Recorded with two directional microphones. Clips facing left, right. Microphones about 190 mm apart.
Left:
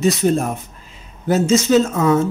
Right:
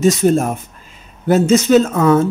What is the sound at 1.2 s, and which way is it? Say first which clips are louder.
Speech: right 3 dB; 55° right (ahead or behind).